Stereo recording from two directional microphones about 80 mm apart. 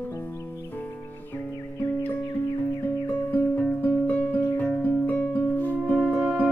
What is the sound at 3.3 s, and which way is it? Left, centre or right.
Music, left.